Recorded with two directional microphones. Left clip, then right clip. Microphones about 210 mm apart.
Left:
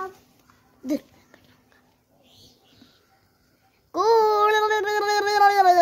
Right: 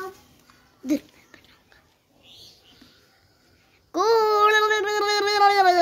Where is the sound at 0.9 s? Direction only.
15° left (ahead or behind).